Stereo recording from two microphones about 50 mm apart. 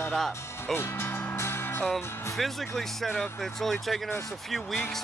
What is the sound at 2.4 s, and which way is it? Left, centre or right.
Speech, centre.